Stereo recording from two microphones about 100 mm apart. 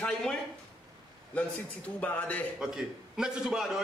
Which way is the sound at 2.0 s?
15° left (ahead or behind).